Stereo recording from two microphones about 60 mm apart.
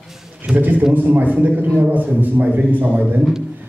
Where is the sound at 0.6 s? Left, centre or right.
Right.